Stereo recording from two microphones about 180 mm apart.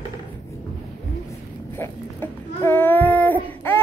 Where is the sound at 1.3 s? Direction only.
15° left (ahead or behind).